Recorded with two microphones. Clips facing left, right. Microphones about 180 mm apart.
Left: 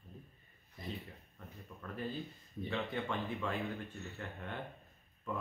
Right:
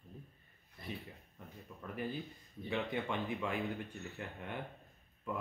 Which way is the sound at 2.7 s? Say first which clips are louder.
Right 1 dB; 15° right (ahead or behind).